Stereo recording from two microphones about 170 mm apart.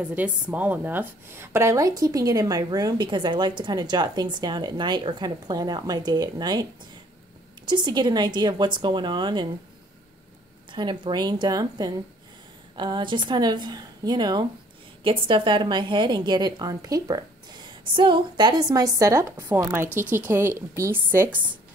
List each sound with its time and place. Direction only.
0.0 s a woman's voice: 10° right (ahead or behind); by 9.5 s 25° right (ahead or behind)
10.7 s a woman's voice: 25° right (ahead or behind)